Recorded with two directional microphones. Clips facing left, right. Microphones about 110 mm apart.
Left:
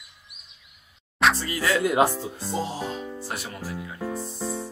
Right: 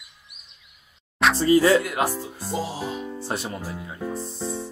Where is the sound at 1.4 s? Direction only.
30° right (ahead or behind).